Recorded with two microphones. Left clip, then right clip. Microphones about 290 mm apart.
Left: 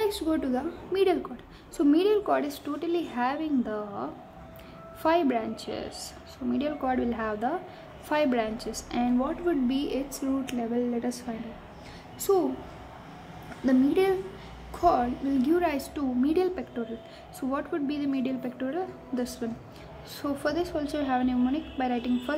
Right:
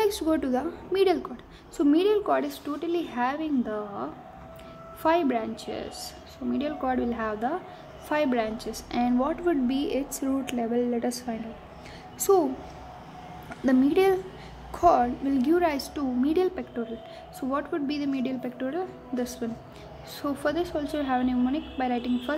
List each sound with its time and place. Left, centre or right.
0.0 s a woman's voice: centre
13.7 s a woman's voice: centre